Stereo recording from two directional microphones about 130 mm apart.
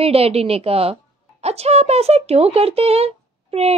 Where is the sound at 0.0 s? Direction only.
50° right (ahead or behind).